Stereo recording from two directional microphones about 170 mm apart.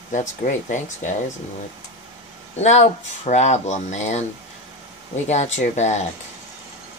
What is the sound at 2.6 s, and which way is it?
Speech, 40° left (ahead or behind).